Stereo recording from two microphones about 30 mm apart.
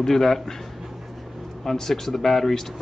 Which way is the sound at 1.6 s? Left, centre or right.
Centre.